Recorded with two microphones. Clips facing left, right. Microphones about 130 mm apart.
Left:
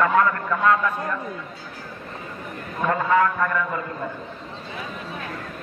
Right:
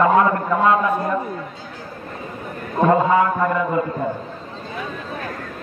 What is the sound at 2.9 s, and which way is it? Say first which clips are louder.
Speech: right 3 dB; 20° right (ahead or behind).